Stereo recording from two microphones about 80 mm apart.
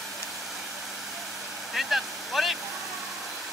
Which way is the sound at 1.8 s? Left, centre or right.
Centre.